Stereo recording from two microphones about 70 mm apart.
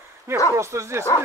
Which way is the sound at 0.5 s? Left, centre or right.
Right.